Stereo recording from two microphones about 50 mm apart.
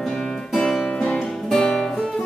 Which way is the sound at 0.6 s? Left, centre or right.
Centre.